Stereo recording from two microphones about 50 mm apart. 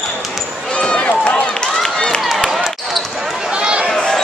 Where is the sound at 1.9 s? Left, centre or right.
Centre.